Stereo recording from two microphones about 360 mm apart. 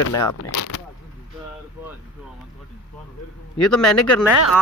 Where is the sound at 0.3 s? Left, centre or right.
Left.